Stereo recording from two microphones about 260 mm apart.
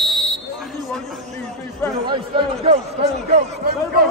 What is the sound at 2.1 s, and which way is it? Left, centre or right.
Speech, centre.